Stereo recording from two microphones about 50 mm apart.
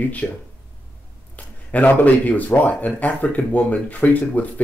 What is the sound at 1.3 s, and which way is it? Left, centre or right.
Speech, left.